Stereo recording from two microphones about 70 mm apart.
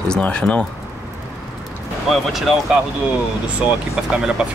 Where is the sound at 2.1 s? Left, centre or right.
Centre.